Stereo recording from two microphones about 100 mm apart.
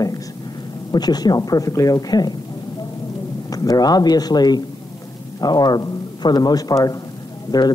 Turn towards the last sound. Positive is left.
turn(degrees=40)  # may be behind; listen again after turning